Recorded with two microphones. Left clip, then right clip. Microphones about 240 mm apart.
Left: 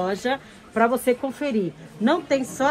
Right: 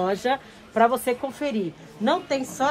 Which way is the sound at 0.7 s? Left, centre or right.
Right.